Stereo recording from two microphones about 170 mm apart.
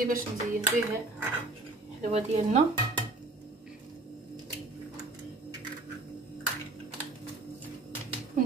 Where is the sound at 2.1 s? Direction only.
35° right (ahead or behind).